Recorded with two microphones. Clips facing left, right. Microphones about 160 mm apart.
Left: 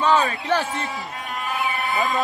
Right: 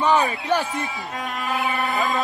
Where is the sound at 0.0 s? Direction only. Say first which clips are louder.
Even; 15° right (ahead or behind).